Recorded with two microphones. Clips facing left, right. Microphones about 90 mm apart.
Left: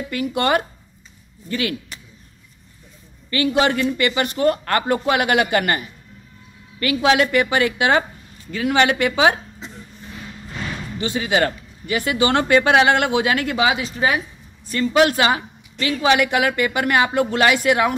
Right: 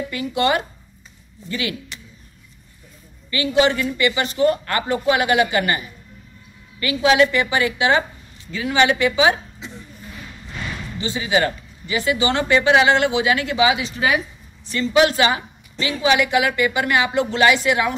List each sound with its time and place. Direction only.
0.1 s a man's voice: 50° left (ahead or behind)
3.3 s a man's voice: 50° left (ahead or behind)
11.0 s a man's voice: 55° left (ahead or behind)